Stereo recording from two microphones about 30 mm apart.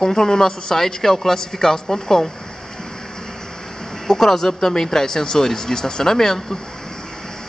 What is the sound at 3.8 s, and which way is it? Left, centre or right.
Speech, centre.